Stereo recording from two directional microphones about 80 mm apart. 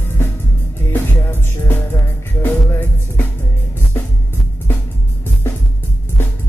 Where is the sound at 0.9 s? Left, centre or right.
Left.